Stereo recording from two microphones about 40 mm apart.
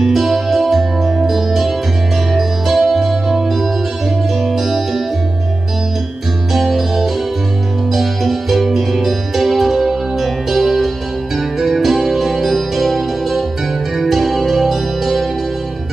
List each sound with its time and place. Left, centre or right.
0.0 s music: centre
6.5 s music: centre